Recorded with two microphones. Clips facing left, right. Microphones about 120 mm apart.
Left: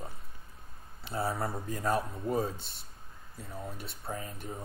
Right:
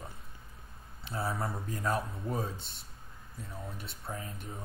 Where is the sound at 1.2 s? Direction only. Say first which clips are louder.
Left 2 dB; 30° left (ahead or behind).